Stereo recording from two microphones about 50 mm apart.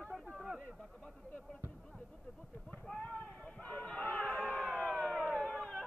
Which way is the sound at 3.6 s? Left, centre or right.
Left.